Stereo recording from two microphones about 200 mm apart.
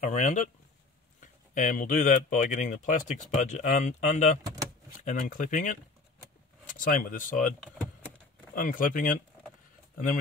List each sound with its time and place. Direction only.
0.0 s speech: 35° left (ahead or behind)
8.5 s speech: 45° left (ahead or behind)